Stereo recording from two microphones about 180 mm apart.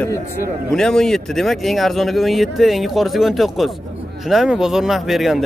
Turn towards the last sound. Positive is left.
turn(degrees=0)  # may be behind; listen again after turning